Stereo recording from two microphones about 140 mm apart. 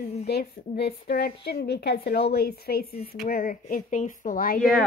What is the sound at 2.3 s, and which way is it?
Speech, 90° left.